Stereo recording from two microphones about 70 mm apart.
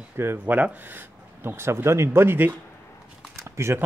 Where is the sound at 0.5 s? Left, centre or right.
Right.